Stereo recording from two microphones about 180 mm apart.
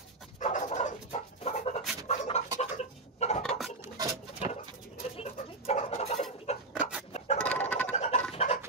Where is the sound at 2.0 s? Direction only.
35° left (ahead or behind).